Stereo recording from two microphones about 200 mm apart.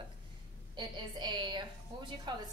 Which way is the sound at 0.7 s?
20° right (ahead or behind).